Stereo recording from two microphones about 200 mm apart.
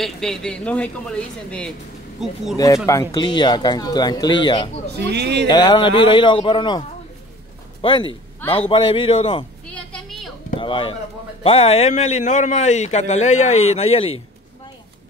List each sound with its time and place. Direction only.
0.0 s a woman's voice: centre (ahead or behind)
2.5 s speech: 15° left (ahead or behind)
4.9 s speech: 55° right (ahead or behind)
5.5 s speech: 20° left (ahead or behind)
7.8 s speech: 25° left (ahead or behind)
9.7 s a sound: 5° left (ahead or behind)
10.6 s a man's voice: 25° left (ahead or behind)